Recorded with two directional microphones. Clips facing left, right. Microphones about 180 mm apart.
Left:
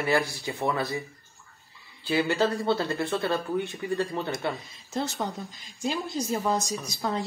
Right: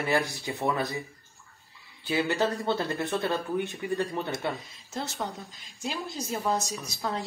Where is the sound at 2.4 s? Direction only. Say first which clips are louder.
Left 2 dB; 15° right (ahead or behind).